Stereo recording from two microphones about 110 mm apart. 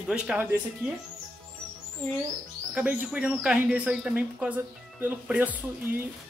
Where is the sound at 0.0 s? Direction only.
5° right (ahead or behind).